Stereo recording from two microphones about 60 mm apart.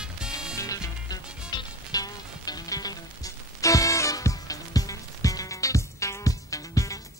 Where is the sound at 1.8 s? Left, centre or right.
Left.